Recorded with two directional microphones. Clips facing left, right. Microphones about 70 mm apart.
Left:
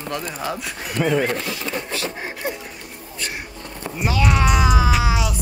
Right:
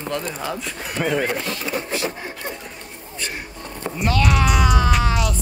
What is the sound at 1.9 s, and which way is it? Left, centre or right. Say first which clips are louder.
Speech: right 2 dB; right.